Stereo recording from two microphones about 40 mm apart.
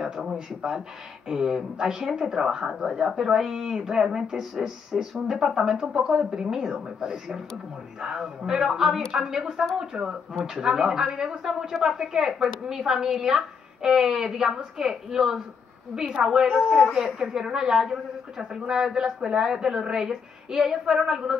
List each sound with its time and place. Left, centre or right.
0.0 s speech: centre